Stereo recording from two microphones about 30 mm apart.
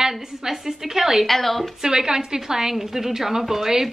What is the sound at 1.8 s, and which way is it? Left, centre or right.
A woman's voice, right.